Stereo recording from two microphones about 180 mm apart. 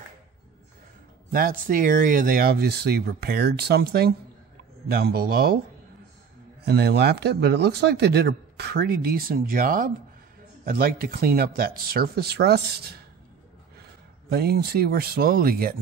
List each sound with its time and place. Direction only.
1.3 s speech: 50° right (ahead or behind)
6.6 s speech: 65° right (ahead or behind)
14.3 s speech: 60° right (ahead or behind)